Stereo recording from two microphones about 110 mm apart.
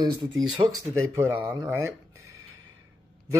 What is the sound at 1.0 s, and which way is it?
Speech, 25° right (ahead or behind).